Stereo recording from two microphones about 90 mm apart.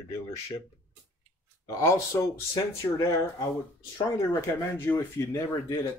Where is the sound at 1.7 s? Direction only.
40° left (ahead or behind).